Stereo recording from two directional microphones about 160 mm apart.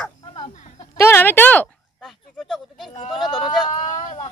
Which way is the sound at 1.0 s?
15° left (ahead or behind).